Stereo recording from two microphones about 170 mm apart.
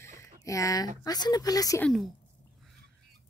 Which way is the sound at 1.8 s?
5° left (ahead or behind).